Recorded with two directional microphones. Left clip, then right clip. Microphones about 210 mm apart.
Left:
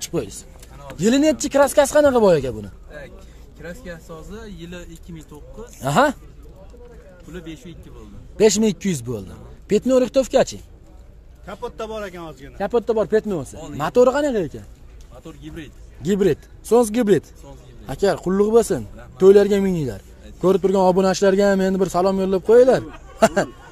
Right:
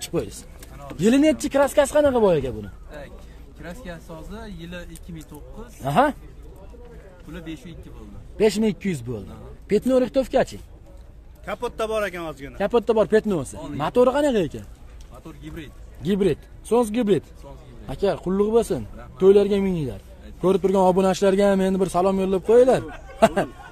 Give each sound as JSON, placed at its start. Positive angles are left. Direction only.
{"t": 0.1, "sound": "a man's voice", "side_deg": 5}
{"t": 3.6, "sound": "speech", "side_deg": 25}
{"t": 7.3, "sound": "a man's voice", "side_deg": 25}
{"t": 11.4, "sound": "a man's voice", "side_deg": -30}
{"t": 12.5, "sound": "speech", "side_deg": -5}
{"t": 13.7, "sound": "speech", "side_deg": 5}
{"t": 14.3, "sound": "speech", "side_deg": -5}
{"t": 15.2, "sound": "speech", "side_deg": 35}
{"t": 16.0, "sound": "a man's voice", "side_deg": 10}